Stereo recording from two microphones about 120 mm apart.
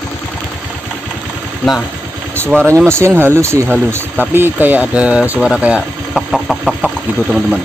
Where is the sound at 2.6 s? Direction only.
20° right (ahead or behind).